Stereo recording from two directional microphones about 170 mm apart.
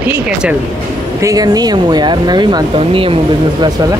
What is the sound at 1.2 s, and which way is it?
Speech, 20° right (ahead or behind).